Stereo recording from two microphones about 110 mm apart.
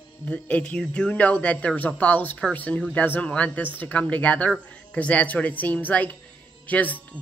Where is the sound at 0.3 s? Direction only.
15° left (ahead or behind).